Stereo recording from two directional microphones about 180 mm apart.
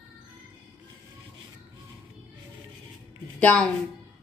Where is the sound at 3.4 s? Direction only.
5° left (ahead or behind).